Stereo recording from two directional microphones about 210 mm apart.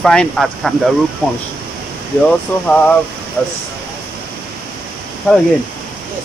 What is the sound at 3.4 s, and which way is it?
Speech, 5° left (ahead or behind).